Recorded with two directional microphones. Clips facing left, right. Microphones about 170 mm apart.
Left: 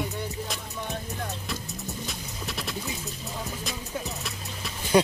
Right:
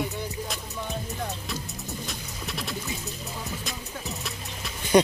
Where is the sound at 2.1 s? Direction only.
Centre (ahead or behind).